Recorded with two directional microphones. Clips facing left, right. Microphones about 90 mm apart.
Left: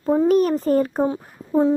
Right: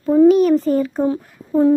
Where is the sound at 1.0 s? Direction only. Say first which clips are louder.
Right 2 dB; 20° left (ahead or behind).